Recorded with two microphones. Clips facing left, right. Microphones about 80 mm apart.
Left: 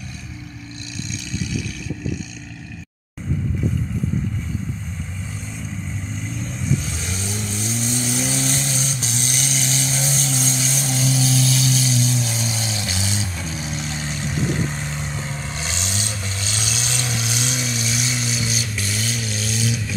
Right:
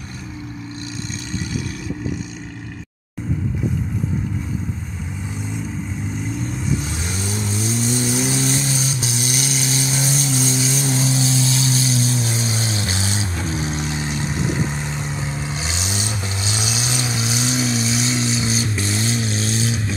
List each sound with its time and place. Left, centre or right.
6.6 s vehicle: centre
11.4 s music: right
12.4 s vehicle: right
13.8 s vehicle: centre
17.9 s a sound: centre
18.4 s vehicle: right